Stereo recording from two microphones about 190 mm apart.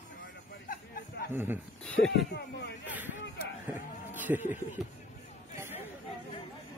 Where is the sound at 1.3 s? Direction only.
10° right (ahead or behind).